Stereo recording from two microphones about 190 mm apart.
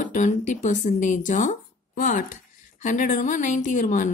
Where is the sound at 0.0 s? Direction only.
40° left (ahead or behind).